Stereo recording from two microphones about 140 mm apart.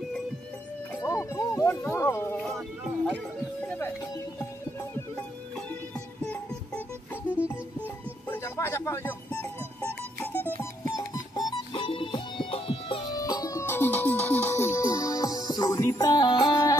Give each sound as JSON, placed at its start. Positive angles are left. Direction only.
{"t": 1.0, "sound": "a sound", "side_deg": 20}
{"t": 3.6, "sound": "music", "side_deg": 10}
{"t": 5.9, "sound": "music", "side_deg": 10}
{"t": 10.8, "sound": "music", "side_deg": 25}
{"t": 13.1, "sound": "music", "side_deg": 25}